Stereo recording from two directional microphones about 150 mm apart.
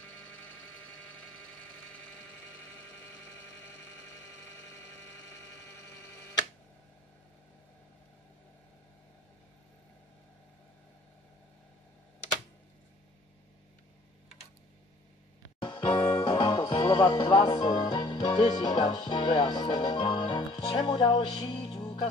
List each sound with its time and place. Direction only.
15.9 s music: 25° left (ahead or behind)